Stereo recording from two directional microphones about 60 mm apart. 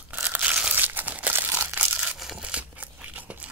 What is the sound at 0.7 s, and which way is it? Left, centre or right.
Crumpling, right.